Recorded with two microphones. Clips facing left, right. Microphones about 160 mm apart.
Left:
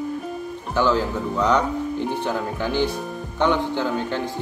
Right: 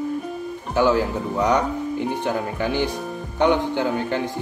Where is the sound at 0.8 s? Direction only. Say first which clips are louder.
Right 2 dB; 10° right (ahead or behind).